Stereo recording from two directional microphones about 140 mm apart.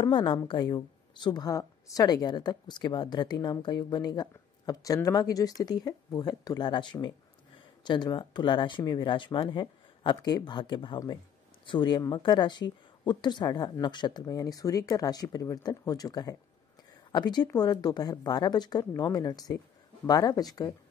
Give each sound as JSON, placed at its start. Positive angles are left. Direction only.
{"t": 0.0, "sound": "speech", "side_deg": 35}